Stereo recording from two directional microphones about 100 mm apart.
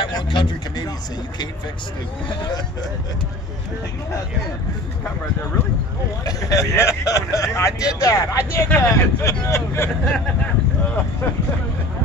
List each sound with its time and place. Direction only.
0.0 s speech: 50° left (ahead or behind)
6.2 s speech: 35° left (ahead or behind)
10.0 s speech: 5° left (ahead or behind)